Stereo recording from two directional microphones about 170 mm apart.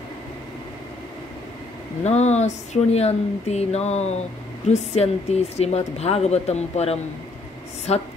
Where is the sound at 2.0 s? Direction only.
40° left (ahead or behind).